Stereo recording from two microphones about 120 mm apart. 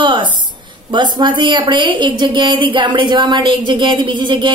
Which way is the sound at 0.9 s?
40° right (ahead or behind).